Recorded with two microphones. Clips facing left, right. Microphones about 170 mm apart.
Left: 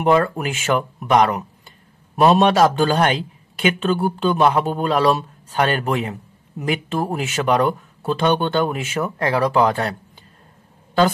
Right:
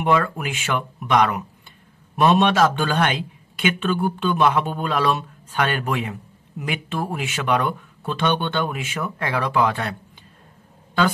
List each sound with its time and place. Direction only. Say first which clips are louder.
0.0 s speech: left 4 dB; 40° left (ahead or behind)